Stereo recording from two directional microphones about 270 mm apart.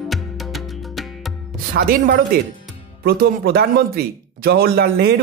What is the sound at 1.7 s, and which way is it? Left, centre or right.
Speech, right.